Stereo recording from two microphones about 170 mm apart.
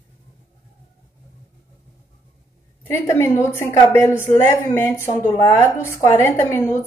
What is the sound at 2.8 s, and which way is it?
A woman's voice, 15° left (ahead or behind).